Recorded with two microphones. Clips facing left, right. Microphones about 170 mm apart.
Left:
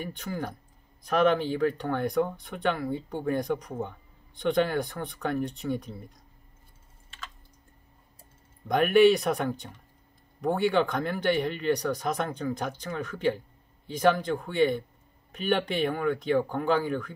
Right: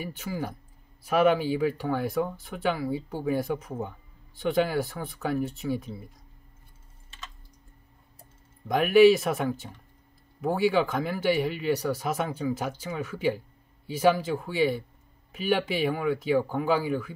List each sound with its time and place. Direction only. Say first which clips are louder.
0.0 s speech: right 1 dB; 5° right (ahead or behind)
8.6 s speech: right 2 dB; centre (ahead or behind)